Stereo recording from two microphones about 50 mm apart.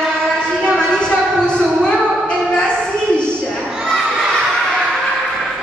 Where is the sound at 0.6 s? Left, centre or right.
Centre.